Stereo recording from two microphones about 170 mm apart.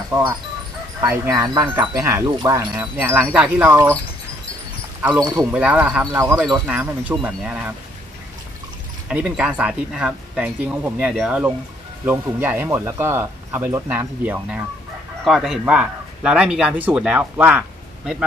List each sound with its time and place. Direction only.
1.0 s speech: 15° right (ahead or behind)
5.5 s speech: 10° right (ahead or behind)
9.1 s speech: 5° right (ahead or behind)